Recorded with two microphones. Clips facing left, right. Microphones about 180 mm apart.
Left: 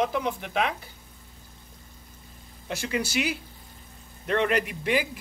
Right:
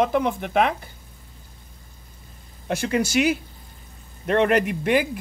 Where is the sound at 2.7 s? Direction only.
50° right (ahead or behind).